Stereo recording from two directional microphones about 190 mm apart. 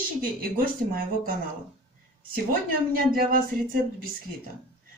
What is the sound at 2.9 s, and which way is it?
Speech, 50° right (ahead or behind).